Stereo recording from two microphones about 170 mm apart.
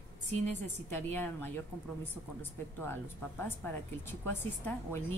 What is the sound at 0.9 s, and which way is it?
Speech, 10° left (ahead or behind).